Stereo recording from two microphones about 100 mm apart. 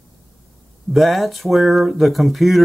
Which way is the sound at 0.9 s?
Centre (ahead or behind).